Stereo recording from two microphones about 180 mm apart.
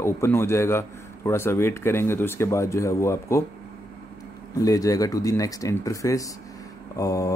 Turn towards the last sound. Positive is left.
turn(degrees=20)  # may be behind; listen again after turning